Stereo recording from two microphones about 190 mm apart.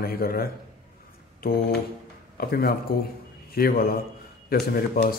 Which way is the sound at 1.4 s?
50° left (ahead or behind).